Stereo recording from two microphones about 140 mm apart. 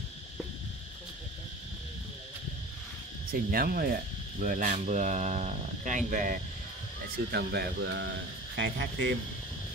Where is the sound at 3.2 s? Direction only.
90° right; by 4.7 s 75° right (ahead or behind).